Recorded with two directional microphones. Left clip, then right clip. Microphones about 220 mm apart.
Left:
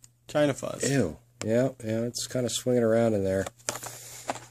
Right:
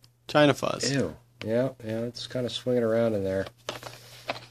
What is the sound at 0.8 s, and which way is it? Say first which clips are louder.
Speech: left 1 dB; 30° left (ahead or behind).